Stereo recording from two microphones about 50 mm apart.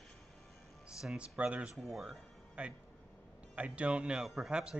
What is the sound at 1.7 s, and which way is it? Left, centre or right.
Speech, centre.